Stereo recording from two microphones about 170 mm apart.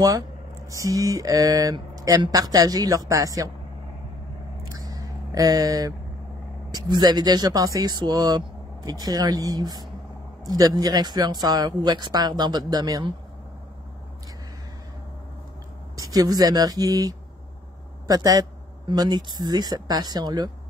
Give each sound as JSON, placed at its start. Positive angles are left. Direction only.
{"t": 0.7, "sound": "speech", "side_deg": -20}
{"t": 4.6, "sound": "a sound", "side_deg": -20}
{"t": 6.7, "sound": "speech", "side_deg": -25}
{"t": 16.0, "sound": "speech", "side_deg": -20}